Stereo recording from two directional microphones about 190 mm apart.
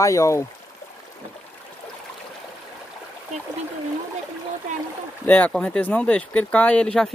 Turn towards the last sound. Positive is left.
turn(degrees=5)  # may be behind; listen again after turning